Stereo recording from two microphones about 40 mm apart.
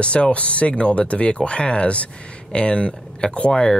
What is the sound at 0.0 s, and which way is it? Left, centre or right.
Speech, left.